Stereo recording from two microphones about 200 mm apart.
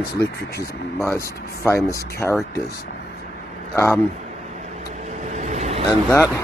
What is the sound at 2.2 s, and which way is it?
Speech, 10° left (ahead or behind).